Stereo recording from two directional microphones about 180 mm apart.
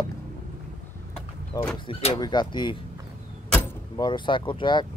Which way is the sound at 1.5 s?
25° left (ahead or behind).